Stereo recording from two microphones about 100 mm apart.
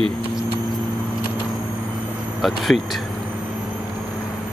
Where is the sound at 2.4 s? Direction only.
Centre (ahead or behind).